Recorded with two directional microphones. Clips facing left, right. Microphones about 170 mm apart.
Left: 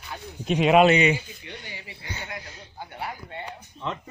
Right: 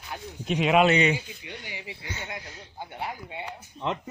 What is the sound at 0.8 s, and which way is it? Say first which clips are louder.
Speech: left 3 dB; 10° left (ahead or behind).